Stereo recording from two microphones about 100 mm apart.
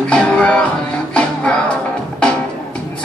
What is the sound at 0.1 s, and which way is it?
Music, 10° left (ahead or behind).